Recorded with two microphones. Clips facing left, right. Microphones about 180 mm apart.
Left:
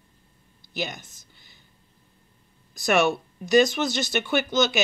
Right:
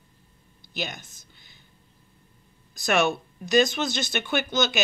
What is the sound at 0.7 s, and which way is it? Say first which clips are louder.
Speech: left 2 dB; 10° left (ahead or behind).